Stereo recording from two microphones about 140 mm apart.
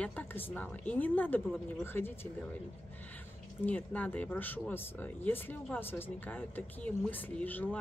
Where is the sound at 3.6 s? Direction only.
10° left (ahead or behind).